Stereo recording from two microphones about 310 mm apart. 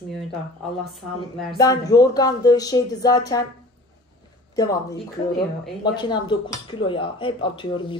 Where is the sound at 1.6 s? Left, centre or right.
Centre.